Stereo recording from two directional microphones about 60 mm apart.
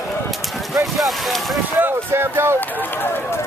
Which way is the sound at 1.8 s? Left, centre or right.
Right.